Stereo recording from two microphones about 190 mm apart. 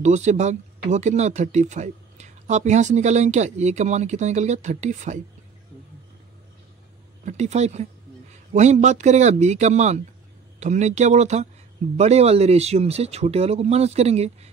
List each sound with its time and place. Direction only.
0.0 s speech: 40° right (ahead or behind)
7.2 s speech: 35° right (ahead or behind)